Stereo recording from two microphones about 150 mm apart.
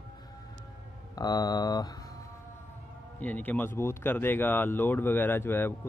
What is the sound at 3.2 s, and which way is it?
Speech, 10° left (ahead or behind).